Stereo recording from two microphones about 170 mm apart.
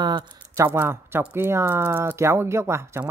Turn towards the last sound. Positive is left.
turn(degrees=-15)  # may be behind; listen again after turning